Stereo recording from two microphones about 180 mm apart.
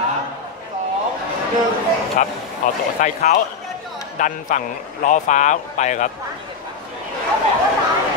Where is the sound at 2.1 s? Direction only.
45° left (ahead or behind).